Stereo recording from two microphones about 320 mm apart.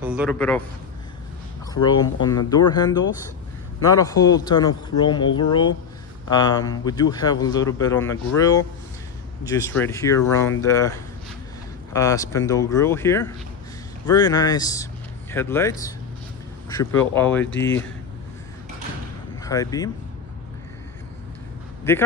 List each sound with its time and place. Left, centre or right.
0.0 s a man's voice: centre
1.7 s a man's voice: centre
17.5 s speech: left
19.4 s a man's voice: centre
21.9 s a man's voice: centre